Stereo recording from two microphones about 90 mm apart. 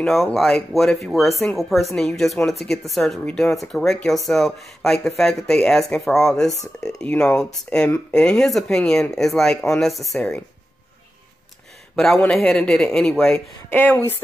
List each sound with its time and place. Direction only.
0.0 s speech: 5° left (ahead or behind)
11.9 s speech: 5° left (ahead or behind)
13.7 s speech: 20° left (ahead or behind)